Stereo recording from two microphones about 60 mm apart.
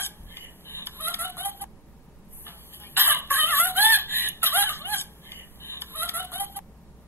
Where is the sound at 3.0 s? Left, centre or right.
Right.